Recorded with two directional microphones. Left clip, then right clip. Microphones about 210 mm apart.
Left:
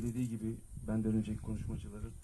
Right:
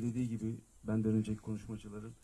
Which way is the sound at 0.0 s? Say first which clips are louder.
Right 1 dB; 55° right (ahead or behind).